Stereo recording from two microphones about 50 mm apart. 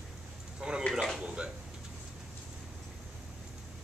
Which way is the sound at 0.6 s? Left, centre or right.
Centre.